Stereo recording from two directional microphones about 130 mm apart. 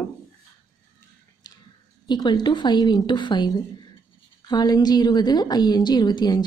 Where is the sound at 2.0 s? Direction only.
35° left (ahead or behind).